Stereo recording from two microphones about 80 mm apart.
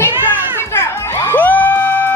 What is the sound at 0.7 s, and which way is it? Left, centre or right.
Children playing, left.